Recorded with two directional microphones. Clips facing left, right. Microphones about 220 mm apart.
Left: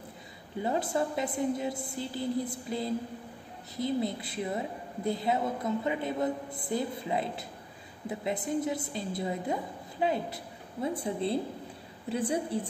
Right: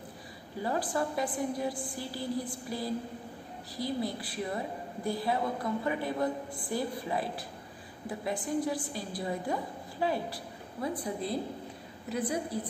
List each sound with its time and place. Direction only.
0.6 s a woman's voice: 25° left (ahead or behind)